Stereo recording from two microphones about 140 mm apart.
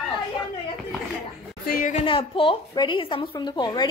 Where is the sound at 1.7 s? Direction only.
75° left (ahead or behind).